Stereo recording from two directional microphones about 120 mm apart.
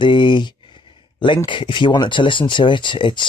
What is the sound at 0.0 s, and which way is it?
Speech, 40° left (ahead or behind).